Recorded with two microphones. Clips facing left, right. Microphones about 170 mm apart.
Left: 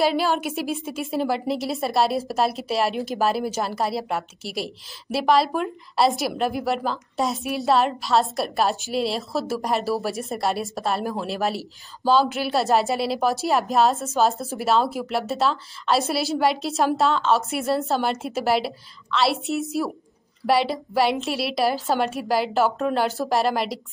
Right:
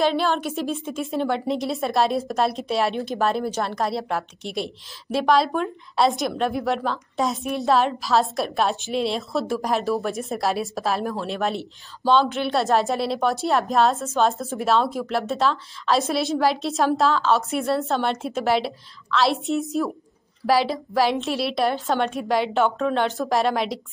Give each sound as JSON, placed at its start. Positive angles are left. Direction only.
{"t": 0.0, "sound": "a woman's voice", "side_deg": 5}